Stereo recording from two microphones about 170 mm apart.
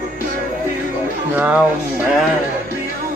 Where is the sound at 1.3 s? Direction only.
10° right (ahead or behind).